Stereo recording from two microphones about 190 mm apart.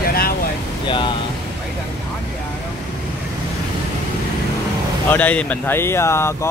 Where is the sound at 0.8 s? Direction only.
25° left (ahead or behind).